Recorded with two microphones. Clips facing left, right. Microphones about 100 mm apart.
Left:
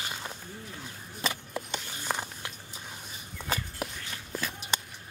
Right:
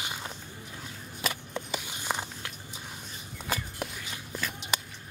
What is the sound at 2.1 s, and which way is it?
Biting, 15° right (ahead or behind).